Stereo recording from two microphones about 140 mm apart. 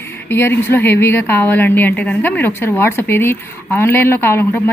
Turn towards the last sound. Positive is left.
turn(degrees=15)  # may be behind; listen again after turning